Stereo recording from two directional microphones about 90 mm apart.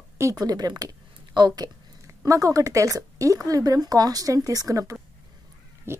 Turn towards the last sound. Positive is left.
turn(degrees=-25)  # may be behind; listen again after turning